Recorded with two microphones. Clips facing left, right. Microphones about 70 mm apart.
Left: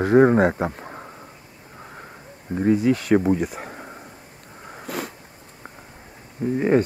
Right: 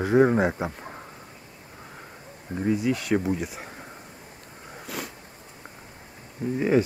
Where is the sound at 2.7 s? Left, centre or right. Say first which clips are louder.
Left 6 dB; centre.